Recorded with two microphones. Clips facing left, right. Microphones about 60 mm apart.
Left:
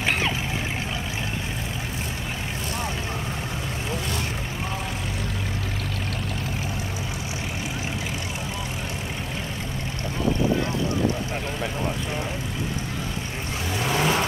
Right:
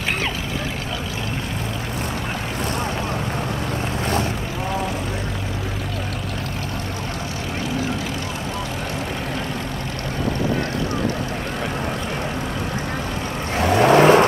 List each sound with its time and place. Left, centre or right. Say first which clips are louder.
13.6 s vehicle: right 12 dB; right